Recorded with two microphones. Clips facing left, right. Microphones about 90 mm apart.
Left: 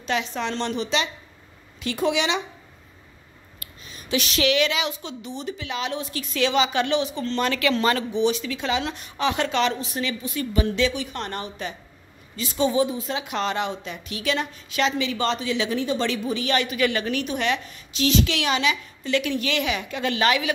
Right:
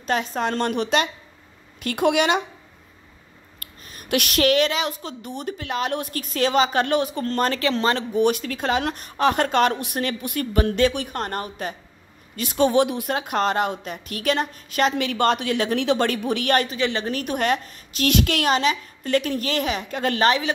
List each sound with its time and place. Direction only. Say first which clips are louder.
0.0 s a woman's voice: right 3 dB; 45° right (ahead or behind)
3.5 s a woman's voice: even; 50° right (ahead or behind); by 8.0 s 30° right (ahead or behind)
8.1 s a woman's voice: right 2 dB; 55° right (ahead or behind)
16.6 s a woman's voice: left 1 dB; 30° right (ahead or behind)
17.2 s a woman's voice: right 2 dB; 45° right (ahead or behind)